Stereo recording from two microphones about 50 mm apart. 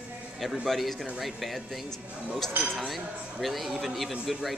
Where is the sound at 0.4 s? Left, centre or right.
Centre.